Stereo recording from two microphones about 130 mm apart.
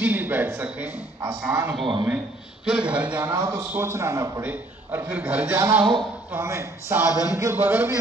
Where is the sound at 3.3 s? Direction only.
30° right (ahead or behind).